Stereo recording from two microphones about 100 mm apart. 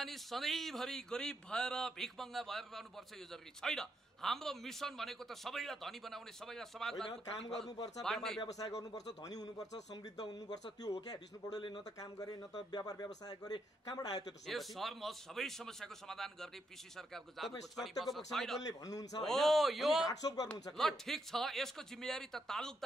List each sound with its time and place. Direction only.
0.0 s a man's voice: centre (ahead or behind)
7.7 s a man's voice: 40° left (ahead or behind)
8.0 s a man's voice: 5° left (ahead or behind)
8.4 s a man's voice: 40° left (ahead or behind)
14.4 s a man's voice: centre (ahead or behind)
18.6 s a man's voice: 35° left (ahead or behind)
19.2 s a man's voice: centre (ahead or behind)
20.1 s a man's voice: 40° left (ahead or behind)
20.7 s a man's voice: 5° left (ahead or behind)